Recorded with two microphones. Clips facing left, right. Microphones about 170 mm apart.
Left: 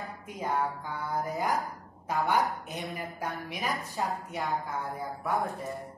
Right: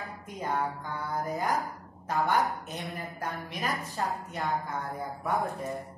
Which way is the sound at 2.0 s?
10° left (ahead or behind).